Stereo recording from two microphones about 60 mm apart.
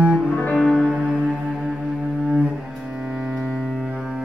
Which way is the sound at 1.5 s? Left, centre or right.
Centre.